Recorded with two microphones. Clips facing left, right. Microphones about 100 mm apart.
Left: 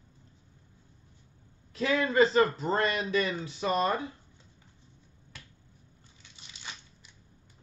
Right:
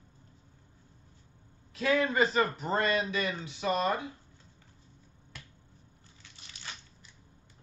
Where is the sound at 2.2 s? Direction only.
30° left (ahead or behind).